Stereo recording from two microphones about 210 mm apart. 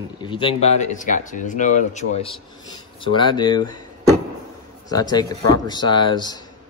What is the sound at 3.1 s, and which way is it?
Speech, 20° left (ahead or behind).